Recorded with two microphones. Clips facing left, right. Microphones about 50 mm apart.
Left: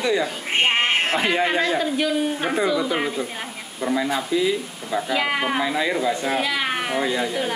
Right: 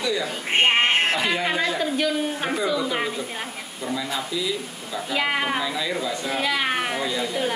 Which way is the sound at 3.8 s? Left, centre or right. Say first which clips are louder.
Left 5 dB; left.